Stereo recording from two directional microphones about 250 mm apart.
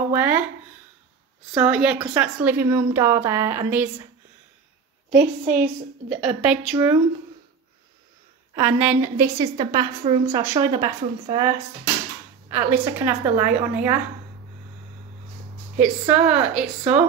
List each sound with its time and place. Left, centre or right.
0.1 s speech: centre
1.5 s a woman's voice: centre
5.2 s a woman's voice: right
6.0 s a woman's voice: centre
8.5 s a woman's voice: centre
15.8 s a woman's voice: centre